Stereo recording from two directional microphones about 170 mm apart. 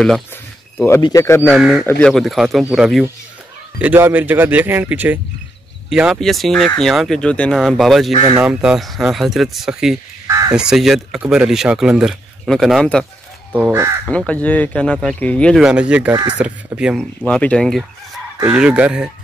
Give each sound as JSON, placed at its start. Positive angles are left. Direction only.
{"t": 1.0, "sound": "speech", "side_deg": 15}
{"t": 1.5, "sound": "speech", "side_deg": -5}
{"t": 1.9, "sound": "speech", "side_deg": 5}
{"t": 10.2, "sound": "caw", "side_deg": -20}
{"t": 10.5, "sound": "speech", "side_deg": -5}
{"t": 13.5, "sound": "speech", "side_deg": -10}
{"t": 14.0, "sound": "speech", "side_deg": 5}
{"t": 15.6, "sound": "speech", "side_deg": -5}
{"t": 16.1, "sound": "speech", "side_deg": -25}
{"t": 16.3, "sound": "speech", "side_deg": -5}
{"t": 17.2, "sound": "speech", "side_deg": 5}